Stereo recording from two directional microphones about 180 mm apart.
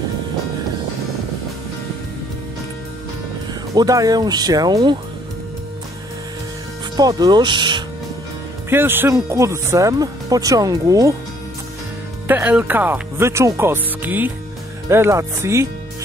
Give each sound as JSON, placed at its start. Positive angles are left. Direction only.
{"t": 3.7, "sound": "speech", "side_deg": -20}
{"t": 7.0, "sound": "speech", "side_deg": -20}
{"t": 8.6, "sound": "speech", "side_deg": -10}
{"t": 12.3, "sound": "speech", "side_deg": -10}